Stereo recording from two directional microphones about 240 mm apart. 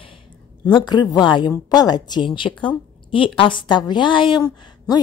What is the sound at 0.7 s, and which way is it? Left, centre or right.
A woman's voice, centre.